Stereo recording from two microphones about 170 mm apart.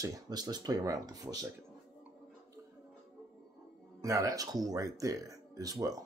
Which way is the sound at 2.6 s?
20° right (ahead or behind).